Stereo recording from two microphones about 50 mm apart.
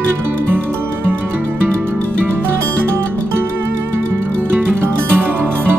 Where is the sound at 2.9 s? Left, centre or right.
Right.